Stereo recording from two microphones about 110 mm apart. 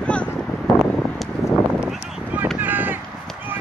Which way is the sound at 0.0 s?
10° left (ahead or behind).